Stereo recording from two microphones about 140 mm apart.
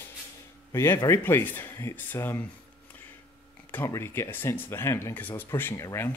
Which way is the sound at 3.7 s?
20° left (ahead or behind).